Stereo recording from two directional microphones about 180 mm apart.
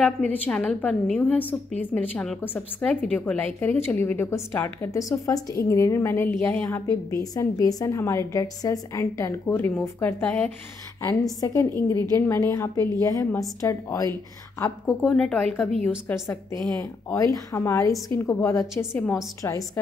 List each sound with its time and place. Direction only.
0.0 s a woman's voice: 5° left (ahead or behind)